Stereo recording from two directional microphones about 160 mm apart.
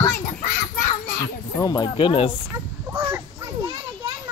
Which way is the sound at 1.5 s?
25° left (ahead or behind).